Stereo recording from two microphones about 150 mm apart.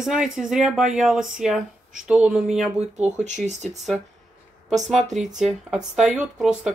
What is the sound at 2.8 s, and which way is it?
Speech, 50° right (ahead or behind).